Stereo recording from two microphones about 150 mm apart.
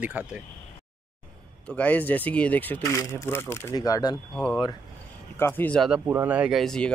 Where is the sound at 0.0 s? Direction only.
5° right (ahead or behind).